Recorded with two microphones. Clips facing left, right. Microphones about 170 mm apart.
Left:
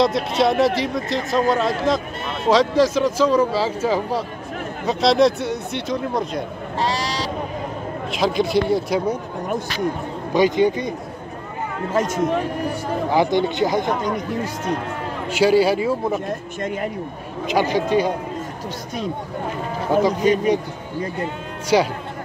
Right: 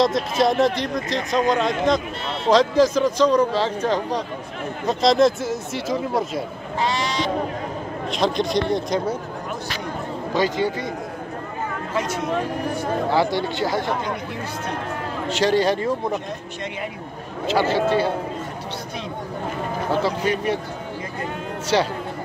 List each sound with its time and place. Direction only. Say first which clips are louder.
0.0 s a man's voice: left 1 dB; centre (ahead or behind)
6.8 s sheep: even; 35° left (ahead or behind)
8.1 s a man's voice: left 2 dB; 5° left (ahead or behind)
10.3 s speech: left 5 dB; 15° left (ahead or behind)
11.9 s speech: left 6 dB; 45° left (ahead or behind)
13.1 s speech: left 5 dB; 15° left (ahead or behind)
15.2 s speech: left 3 dB; 10° left (ahead or behind)
17.5 s speech: even; 15° left (ahead or behind)
19.9 s speech: left 6 dB; 15° left (ahead or behind)
21.7 s speech: left 3 dB; 10° left (ahead or behind)